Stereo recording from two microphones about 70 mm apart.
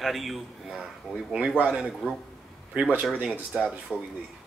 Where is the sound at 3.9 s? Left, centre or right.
Left.